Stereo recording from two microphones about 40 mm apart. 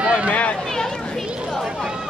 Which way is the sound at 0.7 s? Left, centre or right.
Centre.